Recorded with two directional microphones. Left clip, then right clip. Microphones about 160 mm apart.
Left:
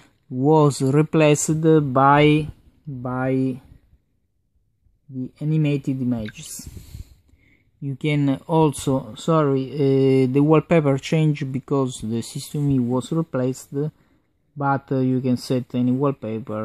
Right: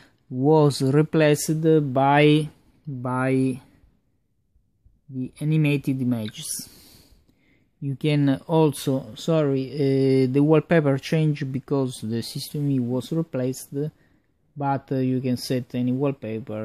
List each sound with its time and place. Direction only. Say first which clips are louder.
0.0 s speech: left 1 dB; 20° left (ahead or behind)
3.0 s speech: even; 10° left (ahead or behind)
5.2 s speech: even; 15° left (ahead or behind)
7.8 s speech: even; 10° left (ahead or behind)
8.5 s speech: left 2 dB; 25° left (ahead or behind)